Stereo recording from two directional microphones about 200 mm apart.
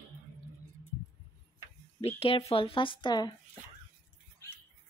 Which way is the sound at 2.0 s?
30° left (ahead or behind).